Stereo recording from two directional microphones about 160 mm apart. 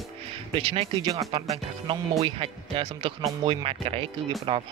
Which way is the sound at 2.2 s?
35° right (ahead or behind).